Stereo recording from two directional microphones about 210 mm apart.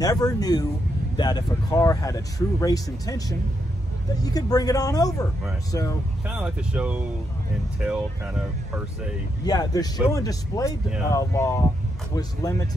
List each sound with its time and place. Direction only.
0.0 s speech: 15° left (ahead or behind)
6.2 s speech: 5° right (ahead or behind)
9.4 s speech: 20° left (ahead or behind)